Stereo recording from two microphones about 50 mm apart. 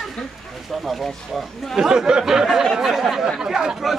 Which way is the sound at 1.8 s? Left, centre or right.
Centre.